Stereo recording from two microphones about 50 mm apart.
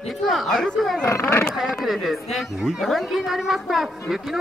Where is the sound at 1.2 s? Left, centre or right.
Left.